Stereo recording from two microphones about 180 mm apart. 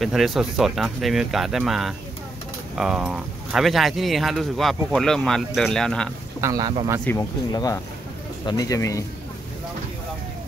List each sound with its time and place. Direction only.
0.0 s speech: centre (ahead or behind)
6.4 s speech: 20° right (ahead or behind)
7.1 s a man's voice: 20° left (ahead or behind)